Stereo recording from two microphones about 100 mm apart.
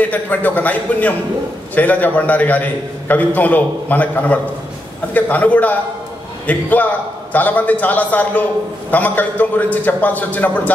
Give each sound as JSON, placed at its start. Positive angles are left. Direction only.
{"t": 0.1, "sound": "a man's voice", "side_deg": 15}